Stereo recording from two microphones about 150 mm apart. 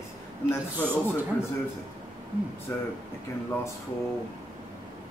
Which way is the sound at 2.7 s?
15° left (ahead or behind).